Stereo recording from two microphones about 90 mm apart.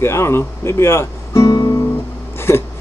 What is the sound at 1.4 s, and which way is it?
Music, 45° left (ahead or behind).